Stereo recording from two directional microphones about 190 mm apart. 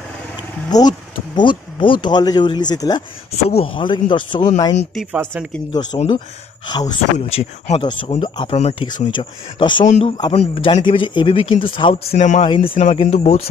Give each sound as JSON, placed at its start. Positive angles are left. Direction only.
{"t": 0.7, "sound": "speech", "side_deg": 20}
{"t": 3.3, "sound": "speech", "side_deg": 30}
{"t": 4.9, "sound": "speech", "side_deg": 0}
{"t": 5.9, "sound": "speech", "side_deg": 40}
{"t": 6.7, "sound": "speech", "side_deg": 20}
{"t": 7.3, "sound": "speech", "side_deg": 30}
{"t": 12.4, "sound": "speech", "side_deg": 30}